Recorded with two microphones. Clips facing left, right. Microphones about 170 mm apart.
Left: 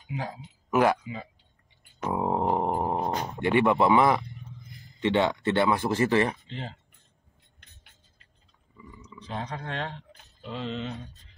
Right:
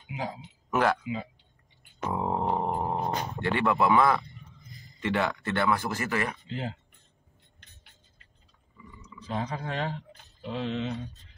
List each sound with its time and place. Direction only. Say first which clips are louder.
0.7 s speech: left 3 dB; 10° left (ahead or behind)
1.0 s speech: right 4 dB; 5° right (ahead or behind)
2.0 s a sound: left 2 dB; 15° left (ahead or behind)
5.0 s speech: left 5 dB; 25° left (ahead or behind)
9.2 s speech: right 2 dB; 5° right (ahead or behind)